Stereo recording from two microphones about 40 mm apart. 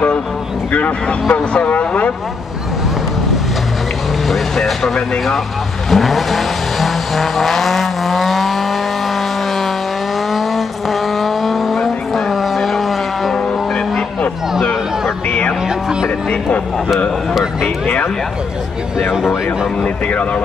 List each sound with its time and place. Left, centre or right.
0.7 s speech: left
4.3 s speech: centre
5.9 s vehicle: centre
10.3 s vehicle: centre
15.2 s music: left
16.3 s speech: left
17.3 s a sound: centre
19.8 s speech: left